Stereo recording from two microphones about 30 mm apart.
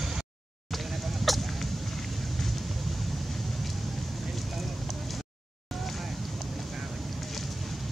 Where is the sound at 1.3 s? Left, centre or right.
Centre.